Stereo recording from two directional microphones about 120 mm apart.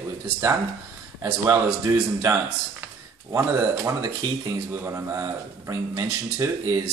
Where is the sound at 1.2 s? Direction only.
20° right (ahead or behind).